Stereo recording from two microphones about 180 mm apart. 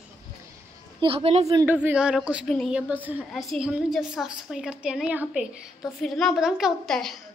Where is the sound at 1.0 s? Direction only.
30° right (ahead or behind).